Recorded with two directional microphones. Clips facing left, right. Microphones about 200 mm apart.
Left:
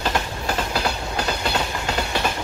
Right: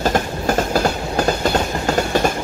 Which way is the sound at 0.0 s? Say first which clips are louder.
Right 6 dB; 45° right (ahead or behind).